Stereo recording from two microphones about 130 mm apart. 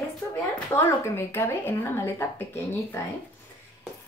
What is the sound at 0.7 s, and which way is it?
Speech, 20° left (ahead or behind).